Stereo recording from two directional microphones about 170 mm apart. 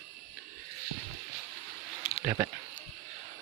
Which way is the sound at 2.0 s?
35° left (ahead or behind).